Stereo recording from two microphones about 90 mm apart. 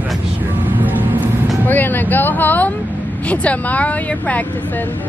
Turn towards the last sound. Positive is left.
turn(degrees=15)  # may be behind; listen again after turning